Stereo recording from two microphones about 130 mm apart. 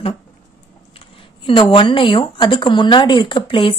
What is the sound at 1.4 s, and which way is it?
A woman's voice, 45° left (ahead or behind).